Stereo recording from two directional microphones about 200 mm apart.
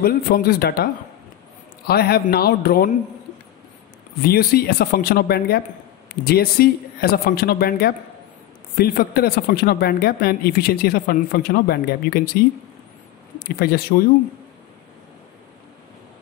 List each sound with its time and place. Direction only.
0.0 s speech: 50° left (ahead or behind)
1.9 s speech: 50° left (ahead or behind)
4.2 s speech: 50° left (ahead or behind)